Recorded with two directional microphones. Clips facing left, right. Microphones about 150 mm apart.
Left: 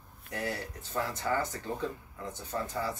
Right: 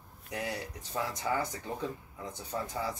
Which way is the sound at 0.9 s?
15° right (ahead or behind).